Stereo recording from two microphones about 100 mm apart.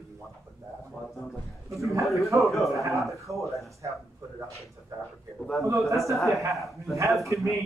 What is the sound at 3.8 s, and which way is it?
Speech, 35° right (ahead or behind).